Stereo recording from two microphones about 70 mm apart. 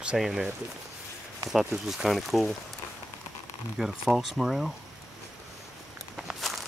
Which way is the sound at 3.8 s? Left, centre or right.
Centre.